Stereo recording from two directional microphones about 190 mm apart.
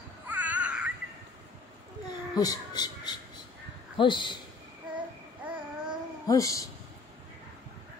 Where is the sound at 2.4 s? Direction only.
20° left (ahead or behind).